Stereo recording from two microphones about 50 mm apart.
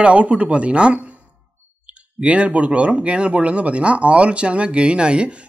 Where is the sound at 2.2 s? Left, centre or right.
Right.